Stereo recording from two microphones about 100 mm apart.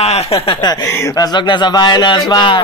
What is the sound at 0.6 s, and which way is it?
Speech, 45° left (ahead or behind).